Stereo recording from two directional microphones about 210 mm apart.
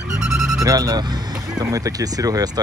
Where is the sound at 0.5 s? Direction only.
15° right (ahead or behind).